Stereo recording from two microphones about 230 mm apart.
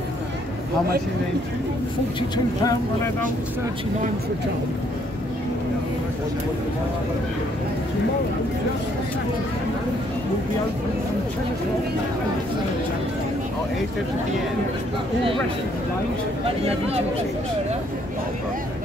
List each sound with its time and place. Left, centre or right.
2.1 s speech: centre
16.4 s speech: right